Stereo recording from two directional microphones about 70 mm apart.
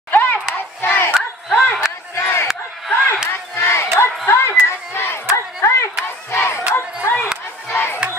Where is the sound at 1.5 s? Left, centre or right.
Centre.